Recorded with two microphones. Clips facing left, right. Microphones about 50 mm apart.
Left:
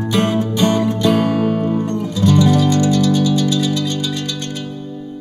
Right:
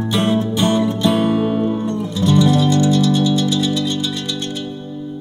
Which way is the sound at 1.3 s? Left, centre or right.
Left.